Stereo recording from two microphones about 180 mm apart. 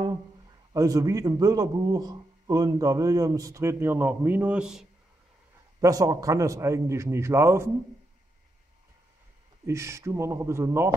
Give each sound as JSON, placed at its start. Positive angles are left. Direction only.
{"t": 0.7, "sound": "a man's voice", "side_deg": -20}
{"t": 5.8, "sound": "a man's voice", "side_deg": -20}
{"t": 9.7, "sound": "a man's voice", "side_deg": -15}